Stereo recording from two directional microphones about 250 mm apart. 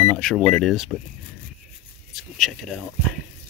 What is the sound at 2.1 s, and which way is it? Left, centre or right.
Speech, centre.